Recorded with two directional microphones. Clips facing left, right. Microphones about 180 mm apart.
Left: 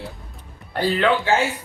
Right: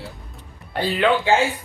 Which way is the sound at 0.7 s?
15° right (ahead or behind).